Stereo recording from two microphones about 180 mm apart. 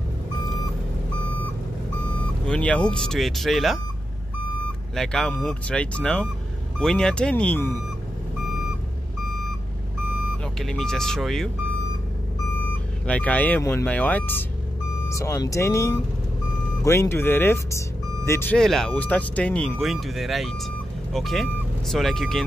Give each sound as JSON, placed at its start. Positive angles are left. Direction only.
{"t": 2.4, "sound": "speech", "side_deg": 5}
{"t": 4.9, "sound": "speech", "side_deg": 5}
{"t": 10.6, "sound": "speech", "side_deg": 5}
{"t": 13.0, "sound": "speech", "side_deg": 5}